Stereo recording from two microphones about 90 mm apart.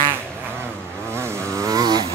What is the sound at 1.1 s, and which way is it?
Vehicle, 30° right (ahead or behind).